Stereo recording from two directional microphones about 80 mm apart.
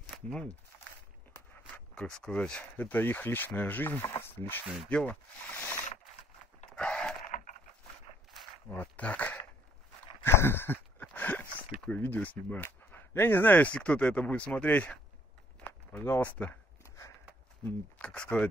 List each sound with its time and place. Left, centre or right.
0.1 s speech: centre
2.0 s speech: centre
2.8 s speech: left
4.8 s speech: centre
5.6 s a sound: left
6.7 s a sound: centre
8.6 s speech: left
10.2 s a sound: left
11.9 s speech: left
16.2 s speech: centre
16.8 s a sound: left
17.6 s speech: centre